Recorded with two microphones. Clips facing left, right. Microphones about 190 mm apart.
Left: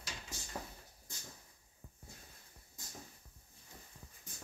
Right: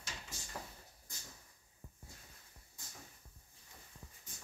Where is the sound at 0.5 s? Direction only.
20° left (ahead or behind).